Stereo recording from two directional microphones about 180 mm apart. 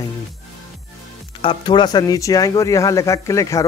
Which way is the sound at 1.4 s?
25° left (ahead or behind).